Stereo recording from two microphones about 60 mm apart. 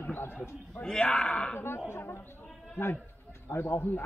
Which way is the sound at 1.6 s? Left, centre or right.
Left.